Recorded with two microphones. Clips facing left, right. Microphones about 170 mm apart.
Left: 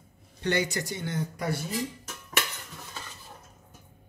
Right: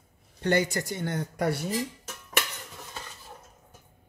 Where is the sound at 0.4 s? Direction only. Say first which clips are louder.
Right 3 dB; 50° right (ahead or behind); by 1.6 s 65° right (ahead or behind).